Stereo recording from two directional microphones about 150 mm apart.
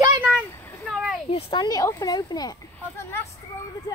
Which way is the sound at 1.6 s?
25° left (ahead or behind).